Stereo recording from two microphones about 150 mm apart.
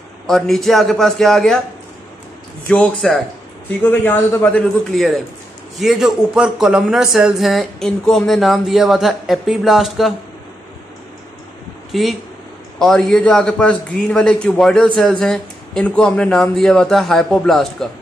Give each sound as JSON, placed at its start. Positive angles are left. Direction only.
{"t": 0.3, "sound": "speech", "side_deg": 0}
{"t": 2.7, "sound": "a man's voice", "side_deg": 5}
{"t": 11.9, "sound": "speech", "side_deg": 0}